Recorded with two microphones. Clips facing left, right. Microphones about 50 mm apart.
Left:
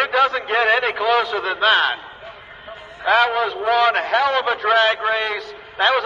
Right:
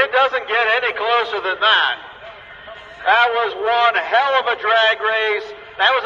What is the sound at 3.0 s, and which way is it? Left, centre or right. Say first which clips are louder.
A man's voice: right 2 dB; right.